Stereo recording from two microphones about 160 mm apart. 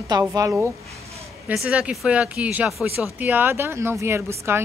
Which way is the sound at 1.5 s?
5° right (ahead or behind).